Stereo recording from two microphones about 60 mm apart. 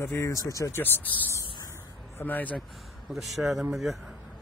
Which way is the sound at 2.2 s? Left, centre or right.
Left.